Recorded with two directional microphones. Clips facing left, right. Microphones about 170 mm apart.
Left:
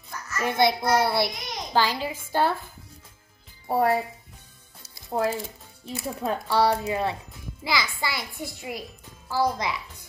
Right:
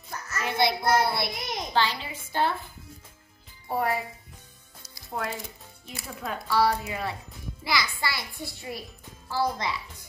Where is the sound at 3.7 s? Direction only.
40° left (ahead or behind).